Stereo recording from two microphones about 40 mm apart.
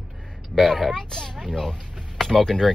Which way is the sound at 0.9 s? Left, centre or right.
Centre.